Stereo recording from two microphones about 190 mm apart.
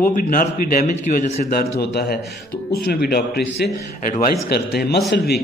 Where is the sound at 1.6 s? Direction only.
55° left (ahead or behind).